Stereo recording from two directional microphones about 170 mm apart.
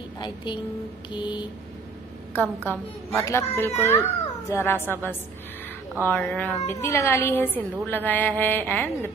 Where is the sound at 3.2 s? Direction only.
15° left (ahead or behind).